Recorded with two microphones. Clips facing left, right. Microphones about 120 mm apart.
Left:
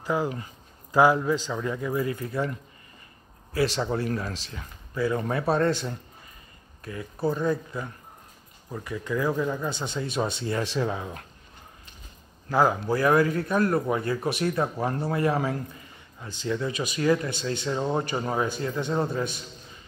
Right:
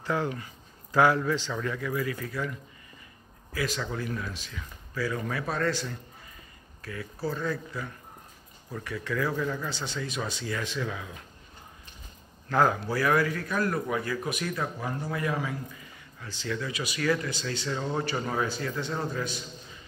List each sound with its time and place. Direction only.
0.0 s speech: 10° left (ahead or behind)
3.5 s speech: 30° left (ahead or behind)
4.9 s speech: 25° left (ahead or behind)
12.4 s speech: 10° left (ahead or behind)
12.9 s speech: 25° left (ahead or behind)
16.2 s speech: 20° left (ahead or behind)